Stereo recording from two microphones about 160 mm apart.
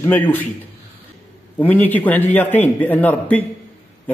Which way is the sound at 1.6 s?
10° left (ahead or behind).